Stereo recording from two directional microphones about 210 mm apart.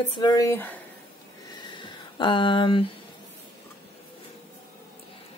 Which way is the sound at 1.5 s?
20° left (ahead or behind).